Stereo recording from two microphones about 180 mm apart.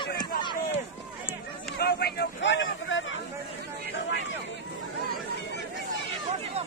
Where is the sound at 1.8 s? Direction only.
60° left (ahead or behind); by 3.2 s 90° left.